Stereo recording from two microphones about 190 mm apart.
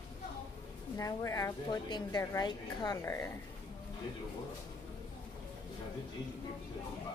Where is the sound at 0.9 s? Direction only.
15° left (ahead or behind).